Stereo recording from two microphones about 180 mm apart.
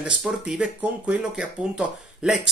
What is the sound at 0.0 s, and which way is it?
Speech, 5° right (ahead or behind).